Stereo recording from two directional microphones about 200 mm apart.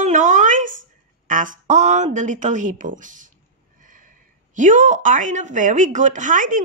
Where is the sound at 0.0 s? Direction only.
40° right (ahead or behind).